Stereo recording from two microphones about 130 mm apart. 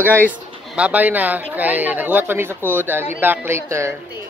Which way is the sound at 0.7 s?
10° right (ahead or behind).